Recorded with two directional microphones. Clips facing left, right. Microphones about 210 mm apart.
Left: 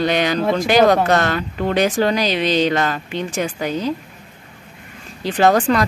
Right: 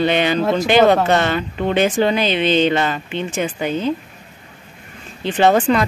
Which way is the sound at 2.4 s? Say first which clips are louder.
Right 2 dB; 40° left (ahead or behind).